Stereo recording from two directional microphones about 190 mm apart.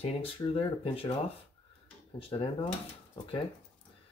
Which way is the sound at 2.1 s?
30° left (ahead or behind).